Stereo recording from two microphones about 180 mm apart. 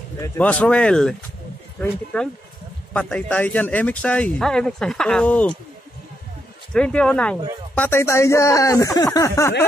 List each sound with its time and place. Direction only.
0.2 s speech: 10° left (ahead or behind)
2.1 s speech: 5° left (ahead or behind)
6.7 s speech: 5° left (ahead or behind)